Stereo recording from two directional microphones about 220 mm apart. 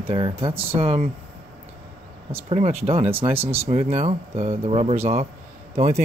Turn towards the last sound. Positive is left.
turn(degrees=-25)  # may be behind; listen again after turning